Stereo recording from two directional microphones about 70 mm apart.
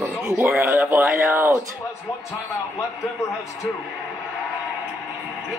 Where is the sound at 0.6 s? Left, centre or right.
Right.